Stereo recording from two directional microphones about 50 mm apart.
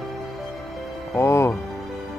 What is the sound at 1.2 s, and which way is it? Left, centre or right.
Speech, left.